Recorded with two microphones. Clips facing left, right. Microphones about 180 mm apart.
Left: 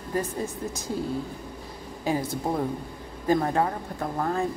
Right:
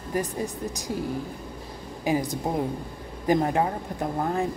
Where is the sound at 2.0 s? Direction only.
15° right (ahead or behind).